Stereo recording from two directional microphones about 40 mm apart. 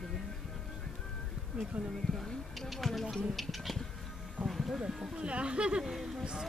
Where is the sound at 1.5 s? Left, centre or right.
Right.